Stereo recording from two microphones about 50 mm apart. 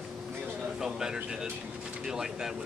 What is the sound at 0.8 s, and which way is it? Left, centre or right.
A man's voice, centre.